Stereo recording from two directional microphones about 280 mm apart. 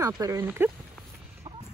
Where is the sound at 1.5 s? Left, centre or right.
Centre.